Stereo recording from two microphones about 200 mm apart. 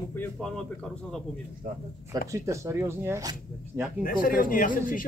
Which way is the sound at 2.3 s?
15° right (ahead or behind).